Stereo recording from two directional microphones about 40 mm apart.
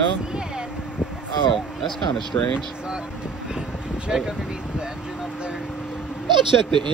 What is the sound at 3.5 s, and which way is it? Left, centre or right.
Vehicle, centre.